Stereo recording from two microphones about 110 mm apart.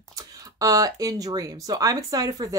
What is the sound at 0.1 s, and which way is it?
Speech, 30° right (ahead or behind).